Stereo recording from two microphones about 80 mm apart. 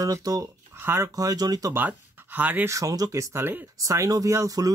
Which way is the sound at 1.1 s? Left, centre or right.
Right.